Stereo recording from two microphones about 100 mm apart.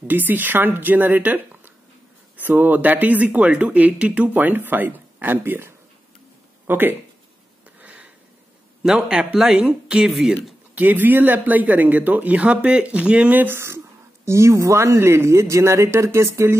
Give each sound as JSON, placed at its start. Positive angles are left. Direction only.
{"t": 0.1, "sound": "speech", "side_deg": -20}
{"t": 6.7, "sound": "speech", "side_deg": -20}
{"t": 7.8, "sound": "a sound", "side_deg": -15}
{"t": 8.8, "sound": "speech", "side_deg": -10}
{"t": 10.7, "sound": "speech", "side_deg": -20}